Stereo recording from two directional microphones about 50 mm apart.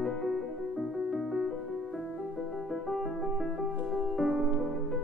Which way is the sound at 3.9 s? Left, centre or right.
Centre.